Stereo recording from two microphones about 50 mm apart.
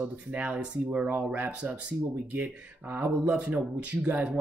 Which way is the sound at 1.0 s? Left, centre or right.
Right.